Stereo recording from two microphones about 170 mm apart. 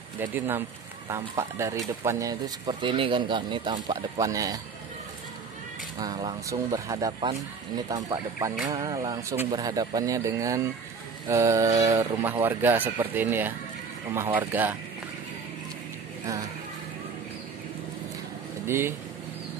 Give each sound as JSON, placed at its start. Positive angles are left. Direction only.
{"t": 0.2, "sound": "speech", "side_deg": -10}
{"t": 5.9, "sound": "speech", "side_deg": -25}
{"t": 18.7, "sound": "speech", "side_deg": -15}